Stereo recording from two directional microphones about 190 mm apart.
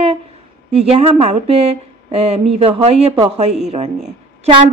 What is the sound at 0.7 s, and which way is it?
A woman's voice, 30° right (ahead or behind).